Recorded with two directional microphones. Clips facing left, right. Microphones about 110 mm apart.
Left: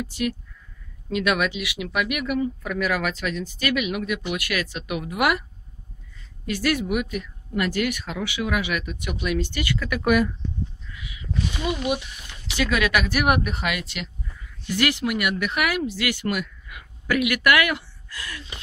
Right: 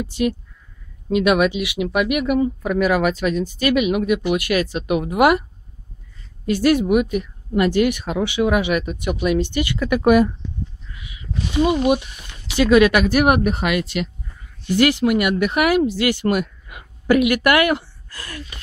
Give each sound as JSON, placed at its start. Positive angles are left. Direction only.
{"t": 0.0, "sound": "speech", "side_deg": -25}
{"t": 6.4, "sound": "speech", "side_deg": -30}
{"t": 10.9, "sound": "a sound", "side_deg": -35}
{"t": 11.6, "sound": "speech", "side_deg": -45}
{"t": 12.6, "sound": "speech", "side_deg": -35}
{"t": 14.7, "sound": "speech", "side_deg": -30}